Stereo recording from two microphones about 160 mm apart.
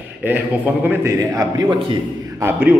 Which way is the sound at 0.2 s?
10° right (ahead or behind).